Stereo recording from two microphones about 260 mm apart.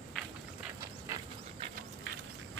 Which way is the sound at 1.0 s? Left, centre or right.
Centre.